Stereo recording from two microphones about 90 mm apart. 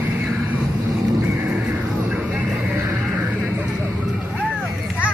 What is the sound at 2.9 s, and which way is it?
Music, 10° right (ahead or behind).